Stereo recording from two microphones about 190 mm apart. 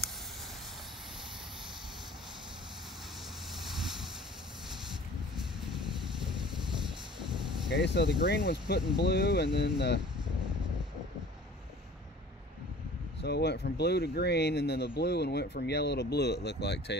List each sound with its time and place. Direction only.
7.7 s speech: 65° left (ahead or behind)
13.2 s speech: 60° left (ahead or behind)